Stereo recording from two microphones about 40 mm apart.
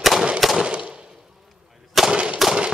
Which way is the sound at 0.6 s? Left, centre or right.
Right.